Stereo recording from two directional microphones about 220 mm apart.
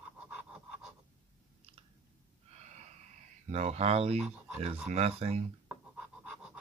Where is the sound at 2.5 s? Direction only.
30° right (ahead or behind).